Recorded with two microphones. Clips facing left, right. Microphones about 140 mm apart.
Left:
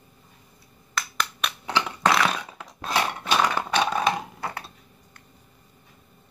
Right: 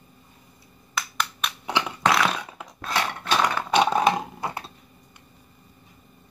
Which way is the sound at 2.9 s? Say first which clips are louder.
Left 1 dB; 10° left (ahead or behind).